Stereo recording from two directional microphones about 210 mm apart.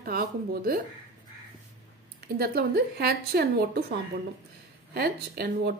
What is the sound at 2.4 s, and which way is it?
A woman's voice, 45° right (ahead or behind).